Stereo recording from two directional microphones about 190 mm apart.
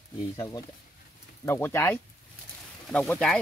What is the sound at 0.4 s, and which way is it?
Speech, 20° left (ahead or behind).